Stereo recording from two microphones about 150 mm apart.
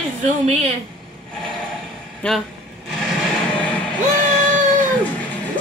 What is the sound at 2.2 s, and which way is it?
Speech, 5° left (ahead or behind).